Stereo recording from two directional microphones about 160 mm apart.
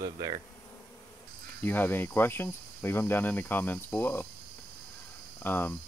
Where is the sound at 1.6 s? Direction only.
10° left (ahead or behind).